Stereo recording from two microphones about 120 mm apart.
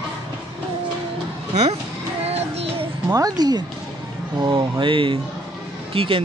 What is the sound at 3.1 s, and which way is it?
Speech, 30° right (ahead or behind).